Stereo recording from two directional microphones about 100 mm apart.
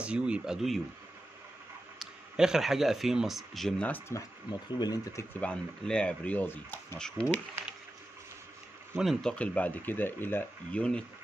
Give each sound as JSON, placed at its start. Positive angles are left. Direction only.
{"t": 0.0, "sound": "speech", "side_deg": -10}
{"t": 2.0, "sound": "speech", "side_deg": -5}
{"t": 4.1, "sound": "speech", "side_deg": 30}
{"t": 4.5, "sound": "speech", "side_deg": 45}
{"t": 5.3, "sound": "speech", "side_deg": 10}
{"t": 7.0, "sound": "speech", "side_deg": 10}
{"t": 8.9, "sound": "speech", "side_deg": 5}
{"t": 10.8, "sound": "speech", "side_deg": 10}